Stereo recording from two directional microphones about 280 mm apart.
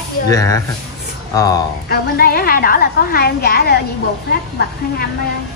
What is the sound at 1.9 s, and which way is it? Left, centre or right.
A woman's voice, left.